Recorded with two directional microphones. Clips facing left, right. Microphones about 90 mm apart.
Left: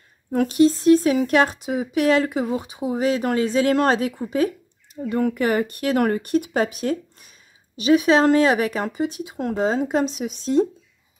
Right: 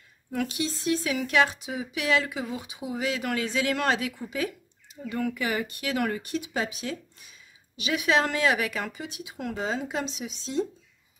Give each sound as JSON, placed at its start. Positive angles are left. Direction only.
{"t": 0.3, "sound": "speech", "side_deg": 40}